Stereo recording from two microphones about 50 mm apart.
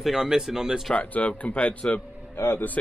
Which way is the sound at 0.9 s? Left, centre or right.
Left.